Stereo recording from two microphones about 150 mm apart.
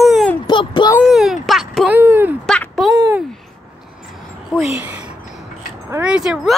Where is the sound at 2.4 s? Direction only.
5° left (ahead or behind).